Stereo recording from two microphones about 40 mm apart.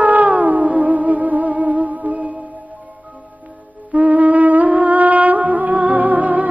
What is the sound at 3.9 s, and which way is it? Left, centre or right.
Music, right.